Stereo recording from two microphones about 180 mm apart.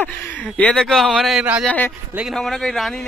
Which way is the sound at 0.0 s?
10° left (ahead or behind).